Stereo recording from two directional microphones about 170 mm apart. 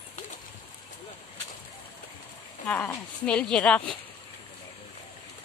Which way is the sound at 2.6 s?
10° left (ahead or behind).